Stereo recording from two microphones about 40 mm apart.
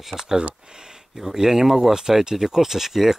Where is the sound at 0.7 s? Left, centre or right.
Centre.